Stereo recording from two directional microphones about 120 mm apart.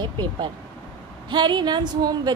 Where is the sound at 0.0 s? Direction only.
40° right (ahead or behind).